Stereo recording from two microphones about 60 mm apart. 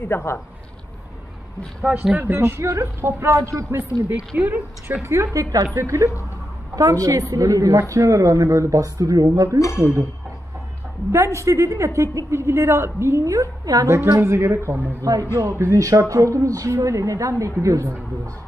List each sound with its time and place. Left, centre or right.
0.0 s speech: left
2.1 s speech: right
4.4 s a woman's voice: right
5.0 s a woman's voice: right
5.8 s a woman's voice: right
6.7 s a woman's voice: right
7.9 s a woman's voice: right
9.6 s speech: left
11.1 s a woman's voice: right
13.8 s a woman's voice: right
15.0 s a woman's voice: right